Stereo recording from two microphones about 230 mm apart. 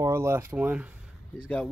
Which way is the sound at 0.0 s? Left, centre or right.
Centre.